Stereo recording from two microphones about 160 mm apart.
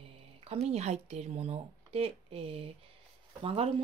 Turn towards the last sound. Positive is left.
turn(degrees=-35)  # may be behind; listen again after turning